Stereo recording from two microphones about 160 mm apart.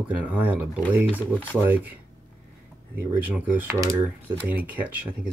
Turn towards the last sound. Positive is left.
turn(degrees=-10)  # may be behind; listen again after turning